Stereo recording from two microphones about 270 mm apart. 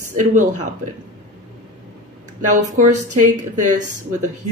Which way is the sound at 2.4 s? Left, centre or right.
Right.